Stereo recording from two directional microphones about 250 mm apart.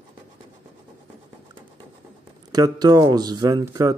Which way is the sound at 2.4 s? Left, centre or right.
Centre.